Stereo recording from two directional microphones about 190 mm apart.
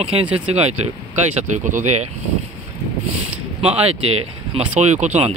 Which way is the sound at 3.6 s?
30° right (ahead or behind).